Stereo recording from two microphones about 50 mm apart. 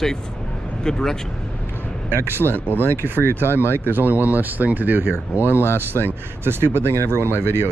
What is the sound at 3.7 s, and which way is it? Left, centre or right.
Speech, right.